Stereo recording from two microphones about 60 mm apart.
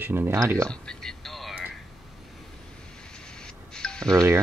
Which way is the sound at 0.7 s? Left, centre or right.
Centre.